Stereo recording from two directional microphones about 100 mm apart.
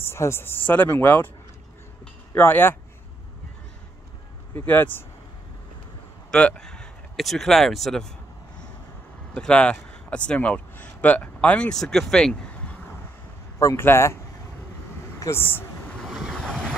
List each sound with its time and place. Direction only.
0.0 s speech: 25° left (ahead or behind)
2.3 s speech: 20° left (ahead or behind)
4.6 s speech: 20° left (ahead or behind)
6.3 s speech: 10° left (ahead or behind)
9.3 s speech: 10° left (ahead or behind)
13.6 s speech: 30° left (ahead or behind)
15.1 s vehicle: 25° left (ahead or behind)
16.0 s vehicle: centre (ahead or behind)